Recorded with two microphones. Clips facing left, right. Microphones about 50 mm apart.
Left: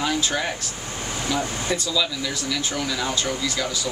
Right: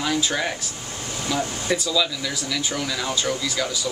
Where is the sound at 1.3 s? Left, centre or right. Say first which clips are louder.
Right 1 dB; centre.